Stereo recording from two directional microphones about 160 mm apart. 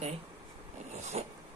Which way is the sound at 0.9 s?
45° right (ahead or behind).